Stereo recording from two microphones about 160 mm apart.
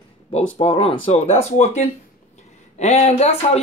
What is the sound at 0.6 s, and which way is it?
Speech, 35° left (ahead or behind).